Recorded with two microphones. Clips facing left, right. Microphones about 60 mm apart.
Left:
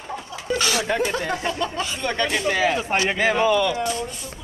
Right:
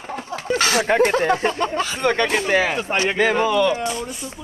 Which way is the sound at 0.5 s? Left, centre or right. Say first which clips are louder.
Right 4 dB; right.